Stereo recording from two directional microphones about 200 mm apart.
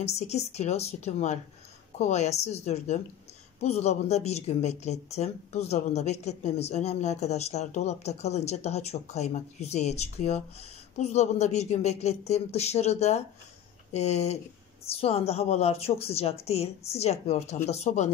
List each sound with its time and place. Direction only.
0.0 s speech: 35° left (ahead or behind)